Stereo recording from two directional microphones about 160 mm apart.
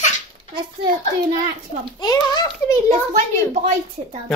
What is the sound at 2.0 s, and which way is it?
Speech, 25° left (ahead or behind).